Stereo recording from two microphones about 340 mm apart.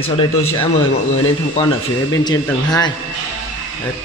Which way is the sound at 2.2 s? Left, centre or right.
Centre.